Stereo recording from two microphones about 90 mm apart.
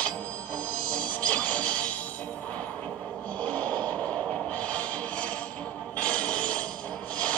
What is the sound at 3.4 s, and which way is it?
Music, 15° left (ahead or behind).